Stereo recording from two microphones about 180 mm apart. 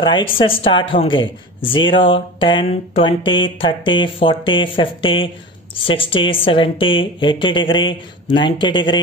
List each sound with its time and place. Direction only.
0.0 s speech: 30° left (ahead or behind)